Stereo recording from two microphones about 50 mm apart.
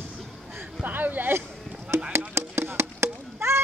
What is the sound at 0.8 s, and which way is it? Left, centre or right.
Speech, right.